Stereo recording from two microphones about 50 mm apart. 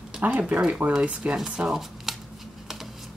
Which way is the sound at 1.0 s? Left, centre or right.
Right.